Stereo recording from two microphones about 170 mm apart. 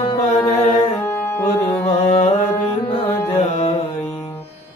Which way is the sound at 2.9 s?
35° left (ahead or behind).